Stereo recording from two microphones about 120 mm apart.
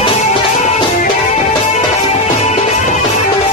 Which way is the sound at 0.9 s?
80° left.